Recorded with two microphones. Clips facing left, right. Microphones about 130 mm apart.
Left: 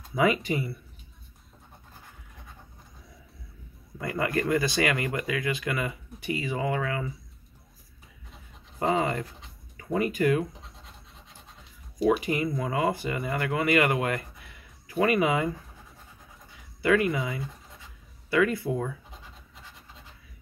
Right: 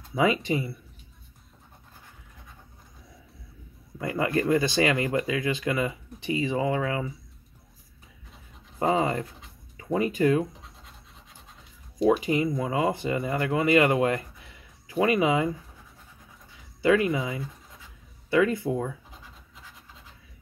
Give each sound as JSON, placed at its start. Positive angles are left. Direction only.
{"t": 0.1, "sound": "speech", "side_deg": -25}
{"t": 4.0, "sound": "speech", "side_deg": -25}
{"t": 8.7, "sound": "speech", "side_deg": -25}
{"t": 12.2, "sound": "speech", "side_deg": -25}
{"t": 16.8, "sound": "speech", "side_deg": -25}